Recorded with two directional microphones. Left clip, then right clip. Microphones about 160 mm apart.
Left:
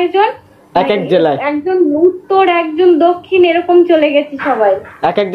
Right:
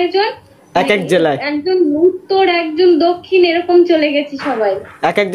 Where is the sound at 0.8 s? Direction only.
15° right (ahead or behind).